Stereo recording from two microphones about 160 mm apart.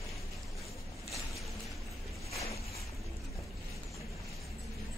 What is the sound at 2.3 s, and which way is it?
Boat, 20° left (ahead or behind).